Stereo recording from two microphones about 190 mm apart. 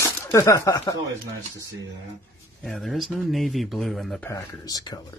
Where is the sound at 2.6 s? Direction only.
Centre (ahead or behind).